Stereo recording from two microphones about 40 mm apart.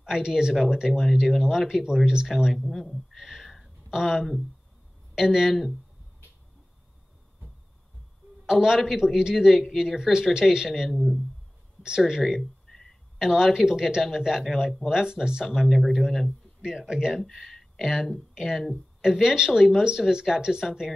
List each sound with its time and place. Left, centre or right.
0.0 s speech: centre
2.5 s speech: centre
3.6 s a sound: centre
5.1 s speech: centre
8.5 s speech: centre
11.8 s speech: centre
12.2 s speech: centre
12.6 s a sound: centre
13.2 s speech: centre
14.9 s speech: centre
15.6 s speech: centre
16.6 s speech: centre
17.2 s speech: centre
17.7 s speech: centre